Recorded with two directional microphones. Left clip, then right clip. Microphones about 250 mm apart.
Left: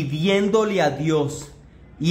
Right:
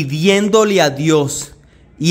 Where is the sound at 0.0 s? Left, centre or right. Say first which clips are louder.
Right 6 dB; right.